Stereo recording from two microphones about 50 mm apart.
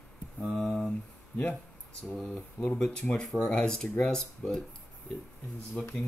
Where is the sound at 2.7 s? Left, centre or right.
Centre.